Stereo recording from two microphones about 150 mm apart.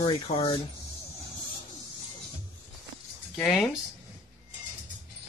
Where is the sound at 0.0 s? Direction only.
40° left (ahead or behind).